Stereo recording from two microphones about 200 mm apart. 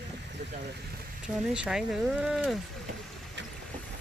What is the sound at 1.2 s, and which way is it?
Speech, 5° right (ahead or behind).